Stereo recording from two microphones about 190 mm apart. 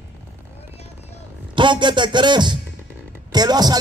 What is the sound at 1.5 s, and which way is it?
A man's voice, 25° right (ahead or behind).